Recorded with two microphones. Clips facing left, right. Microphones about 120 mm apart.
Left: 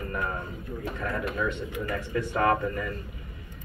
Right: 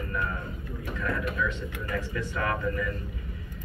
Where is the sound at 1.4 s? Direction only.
45° left (ahead or behind).